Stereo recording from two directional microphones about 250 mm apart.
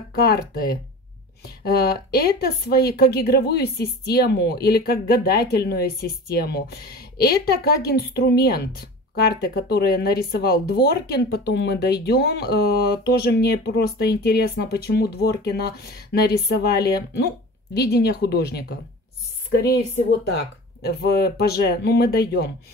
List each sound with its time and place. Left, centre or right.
0.1 s speech: left